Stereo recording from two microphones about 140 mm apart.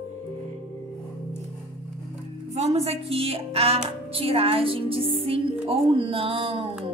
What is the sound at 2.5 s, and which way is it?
A woman's voice, 50° right (ahead or behind).